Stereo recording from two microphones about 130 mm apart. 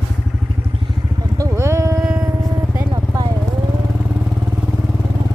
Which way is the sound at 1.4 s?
20° right (ahead or behind).